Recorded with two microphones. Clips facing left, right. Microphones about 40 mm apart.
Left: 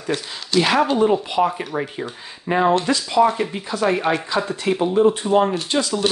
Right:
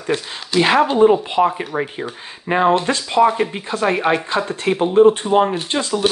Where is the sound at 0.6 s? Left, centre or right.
Right.